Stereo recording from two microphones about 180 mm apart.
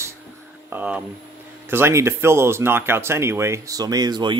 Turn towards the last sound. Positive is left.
turn(degrees=-25)  # may be behind; listen again after turning